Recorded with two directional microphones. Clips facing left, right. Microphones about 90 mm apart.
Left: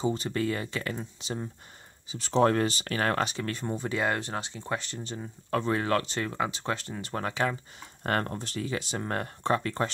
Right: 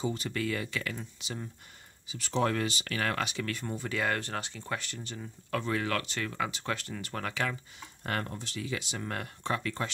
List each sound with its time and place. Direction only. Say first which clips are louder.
0.0 s speech: left 4 dB; 30° left (ahead or behind)
8.0 s speech: left 6 dB; 45° left (ahead or behind)